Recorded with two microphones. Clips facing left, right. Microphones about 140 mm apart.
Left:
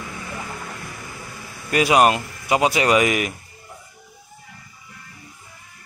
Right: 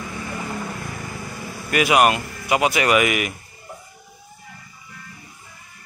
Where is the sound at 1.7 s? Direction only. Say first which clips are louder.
Left 1 dB; 30° left (ahead or behind).